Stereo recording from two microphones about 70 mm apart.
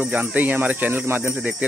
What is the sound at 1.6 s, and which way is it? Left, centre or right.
Speech, centre.